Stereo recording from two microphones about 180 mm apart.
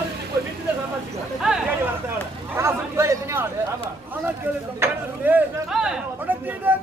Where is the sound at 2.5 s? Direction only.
15° right (ahead or behind).